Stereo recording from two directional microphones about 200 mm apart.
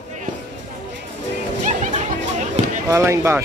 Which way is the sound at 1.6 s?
40° right (ahead or behind).